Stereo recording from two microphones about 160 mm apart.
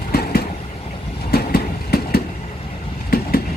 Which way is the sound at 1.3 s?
75° left (ahead or behind).